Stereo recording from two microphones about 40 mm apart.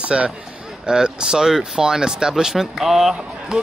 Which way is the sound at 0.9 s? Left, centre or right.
Centre.